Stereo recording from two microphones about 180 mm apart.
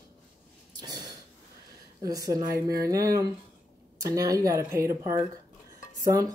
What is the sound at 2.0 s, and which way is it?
Speech, 20° right (ahead or behind).